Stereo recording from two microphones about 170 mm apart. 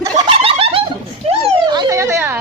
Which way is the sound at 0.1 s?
35° right (ahead or behind).